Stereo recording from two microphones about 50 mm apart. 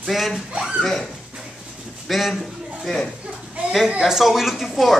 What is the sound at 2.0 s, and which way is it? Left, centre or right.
Speech, centre.